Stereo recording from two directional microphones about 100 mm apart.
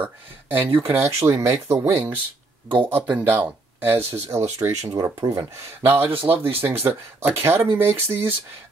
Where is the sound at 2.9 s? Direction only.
20° right (ahead or behind).